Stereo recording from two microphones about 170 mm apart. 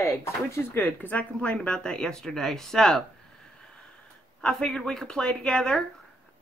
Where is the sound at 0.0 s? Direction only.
15° left (ahead or behind).